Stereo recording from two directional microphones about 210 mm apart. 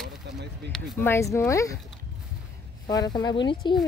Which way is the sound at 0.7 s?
Centre (ahead or behind).